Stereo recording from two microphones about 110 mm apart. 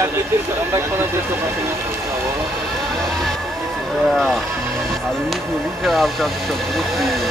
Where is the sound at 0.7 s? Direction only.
25° right (ahead or behind).